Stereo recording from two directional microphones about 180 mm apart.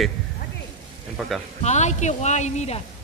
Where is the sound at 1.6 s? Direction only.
40° left (ahead or behind).